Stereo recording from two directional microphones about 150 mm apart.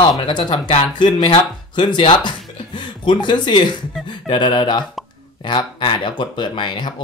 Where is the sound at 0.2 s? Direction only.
30° left (ahead or behind).